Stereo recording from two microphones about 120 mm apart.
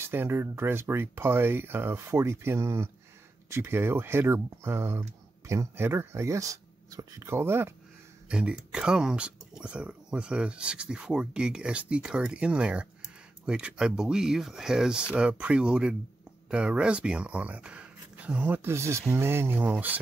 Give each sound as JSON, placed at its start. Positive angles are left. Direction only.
{"t": 0.0, "sound": "speech", "side_deg": -20}
{"t": 8.3, "sound": "speech", "side_deg": -10}